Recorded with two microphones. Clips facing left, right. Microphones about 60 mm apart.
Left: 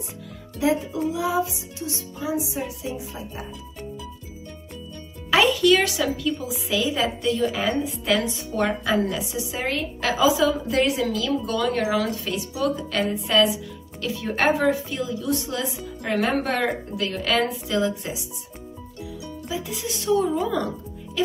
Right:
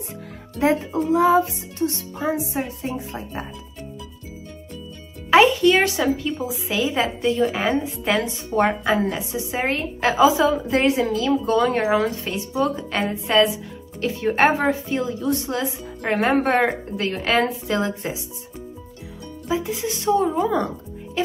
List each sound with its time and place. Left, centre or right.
0.6 s speech: right
5.3 s a woman's voice: right
19.4 s speech: right